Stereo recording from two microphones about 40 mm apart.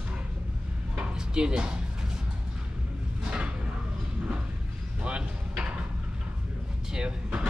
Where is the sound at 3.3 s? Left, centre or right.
Right.